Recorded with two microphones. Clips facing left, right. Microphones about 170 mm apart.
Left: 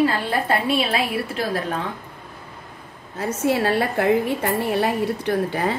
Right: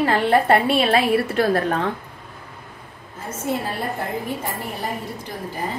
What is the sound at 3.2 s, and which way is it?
A woman's voice, 80° left.